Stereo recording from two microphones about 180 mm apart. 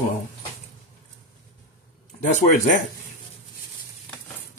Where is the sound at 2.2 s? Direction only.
45° left (ahead or behind).